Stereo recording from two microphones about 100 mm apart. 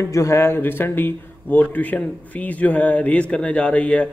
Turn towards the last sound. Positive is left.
turn(degrees=10)  # may be behind; listen again after turning